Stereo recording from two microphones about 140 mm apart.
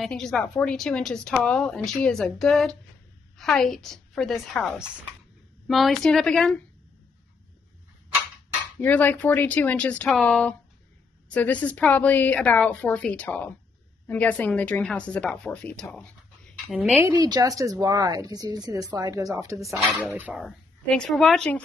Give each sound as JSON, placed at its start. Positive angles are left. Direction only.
{"t": 0.0, "sound": "a woman's voice", "side_deg": 5}
{"t": 8.8, "sound": "a woman's voice", "side_deg": 10}
{"t": 16.7, "sound": "a woman's voice", "side_deg": -5}
{"t": 17.0, "sound": "a woman's voice", "side_deg": -25}
{"t": 20.4, "sound": "a woman's voice", "side_deg": 5}